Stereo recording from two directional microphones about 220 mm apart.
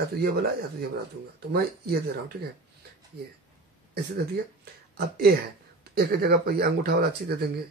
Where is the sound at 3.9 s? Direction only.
45° right (ahead or behind).